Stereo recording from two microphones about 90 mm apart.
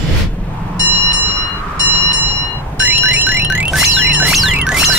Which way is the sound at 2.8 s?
15° right (ahead or behind).